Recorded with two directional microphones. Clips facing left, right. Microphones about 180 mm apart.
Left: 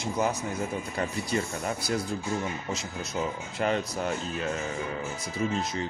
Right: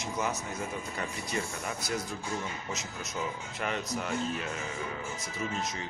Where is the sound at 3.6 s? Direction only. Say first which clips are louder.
Left 6 dB; 35° left (ahead or behind).